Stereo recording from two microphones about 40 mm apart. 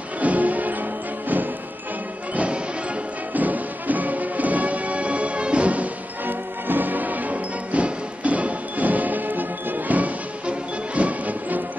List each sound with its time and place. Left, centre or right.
0.2 s music: right
2.3 s music: right
3.3 s music: right
6.2 s music: right